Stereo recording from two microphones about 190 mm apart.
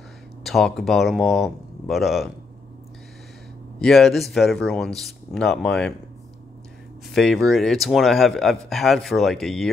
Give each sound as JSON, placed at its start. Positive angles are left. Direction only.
{"t": 0.4, "sound": "speech", "side_deg": 0}
{"t": 3.8, "sound": "a man's voice", "side_deg": 0}
{"t": 7.2, "sound": "a man's voice", "side_deg": 0}